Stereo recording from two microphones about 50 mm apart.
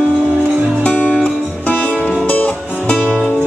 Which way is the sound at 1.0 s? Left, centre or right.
Left.